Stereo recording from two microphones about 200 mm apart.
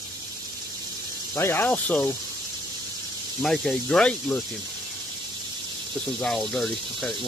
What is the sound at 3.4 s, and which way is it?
Speech, centre (ahead or behind).